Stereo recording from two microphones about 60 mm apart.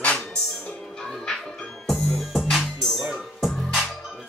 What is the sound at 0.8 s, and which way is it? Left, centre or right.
Music, centre.